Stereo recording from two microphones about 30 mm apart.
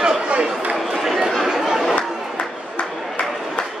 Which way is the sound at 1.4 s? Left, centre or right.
Centre.